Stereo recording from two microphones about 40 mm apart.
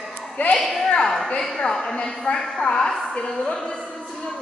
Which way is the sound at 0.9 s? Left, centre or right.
Centre.